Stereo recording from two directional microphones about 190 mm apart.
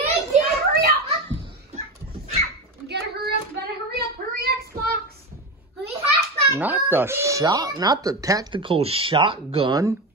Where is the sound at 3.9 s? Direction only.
55° right (ahead or behind).